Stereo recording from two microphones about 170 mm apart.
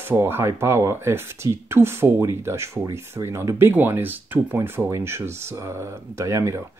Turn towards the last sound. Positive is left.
turn(degrees=-15)  # may be behind; listen again after turning